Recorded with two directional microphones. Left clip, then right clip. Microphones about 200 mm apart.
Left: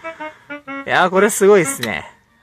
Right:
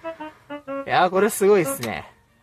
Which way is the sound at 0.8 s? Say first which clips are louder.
Left 5 dB; 15° left (ahead or behind).